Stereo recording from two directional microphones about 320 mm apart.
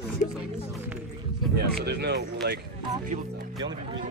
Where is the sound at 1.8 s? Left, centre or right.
Right.